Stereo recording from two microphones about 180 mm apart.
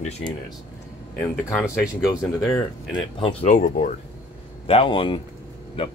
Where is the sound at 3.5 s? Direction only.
50° left (ahead or behind).